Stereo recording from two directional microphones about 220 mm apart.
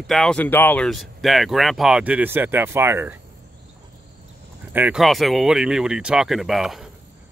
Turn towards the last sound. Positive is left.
turn(degrees=0)  # may be behind; listen again after turning